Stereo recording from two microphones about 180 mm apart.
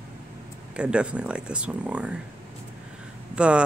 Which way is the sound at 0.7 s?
5° right (ahead or behind).